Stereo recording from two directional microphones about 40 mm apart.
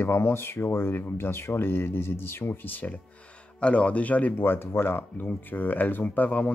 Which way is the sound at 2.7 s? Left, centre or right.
Left.